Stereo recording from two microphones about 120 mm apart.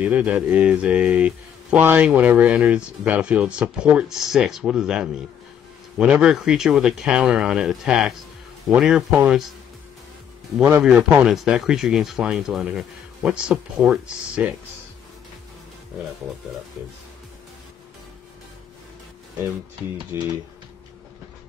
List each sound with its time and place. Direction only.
0.0 s speech: 10° right (ahead or behind)
10.8 s speech: 10° right (ahead or behind)
20.1 s speech: 25° right (ahead or behind)